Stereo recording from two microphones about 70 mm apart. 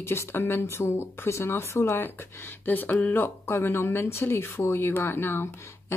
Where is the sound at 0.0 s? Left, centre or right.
Left.